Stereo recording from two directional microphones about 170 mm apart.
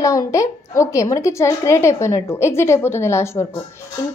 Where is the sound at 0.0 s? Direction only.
20° left (ahead or behind).